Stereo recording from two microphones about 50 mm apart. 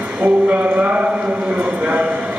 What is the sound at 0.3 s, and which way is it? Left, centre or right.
Speech, right.